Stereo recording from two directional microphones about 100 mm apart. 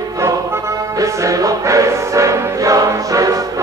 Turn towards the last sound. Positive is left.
turn(degrees=-35)  # may be behind; listen again after turning